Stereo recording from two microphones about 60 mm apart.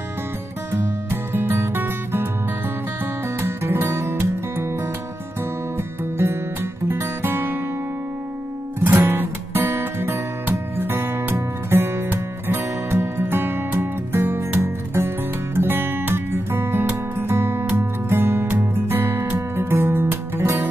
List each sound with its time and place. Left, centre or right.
1.3 s music: right
3.3 s music: right
6.1 s music: right
8.7 s music: right